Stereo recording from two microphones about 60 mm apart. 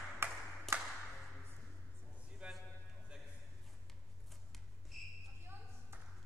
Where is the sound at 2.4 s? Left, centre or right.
Centre.